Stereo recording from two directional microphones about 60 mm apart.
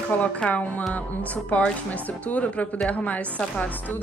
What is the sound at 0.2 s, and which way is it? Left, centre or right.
A woman's voice, left.